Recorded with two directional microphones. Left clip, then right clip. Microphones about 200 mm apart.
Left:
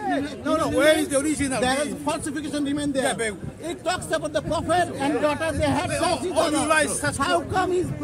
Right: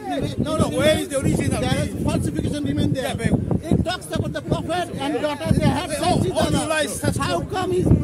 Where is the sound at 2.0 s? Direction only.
30° left (ahead or behind).